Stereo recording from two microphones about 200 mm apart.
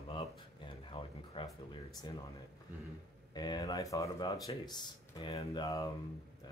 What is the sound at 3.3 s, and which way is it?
Speech, 20° left (ahead or behind).